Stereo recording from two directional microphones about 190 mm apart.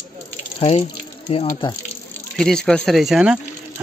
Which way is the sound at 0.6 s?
35° left (ahead or behind).